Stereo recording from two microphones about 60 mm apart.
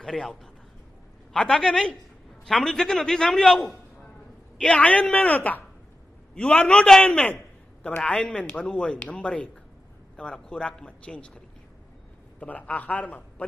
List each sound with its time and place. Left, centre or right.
0.0 s a man's voice: centre
4.6 s a man's voice: centre